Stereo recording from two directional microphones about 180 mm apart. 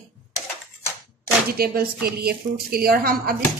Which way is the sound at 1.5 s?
55° right (ahead or behind).